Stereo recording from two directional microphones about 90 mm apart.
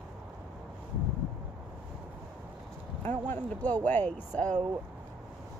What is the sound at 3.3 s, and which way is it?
Speech, 20° left (ahead or behind).